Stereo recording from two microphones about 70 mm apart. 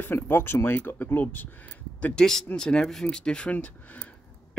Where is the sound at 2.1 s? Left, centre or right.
Centre.